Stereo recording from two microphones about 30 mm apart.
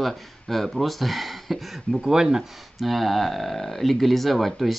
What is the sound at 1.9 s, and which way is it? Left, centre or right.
Speech, centre.